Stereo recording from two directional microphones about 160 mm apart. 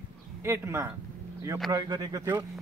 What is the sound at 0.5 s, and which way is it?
A man's voice, 15° right (ahead or behind).